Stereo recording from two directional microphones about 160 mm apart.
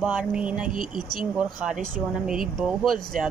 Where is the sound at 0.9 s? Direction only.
25° left (ahead or behind).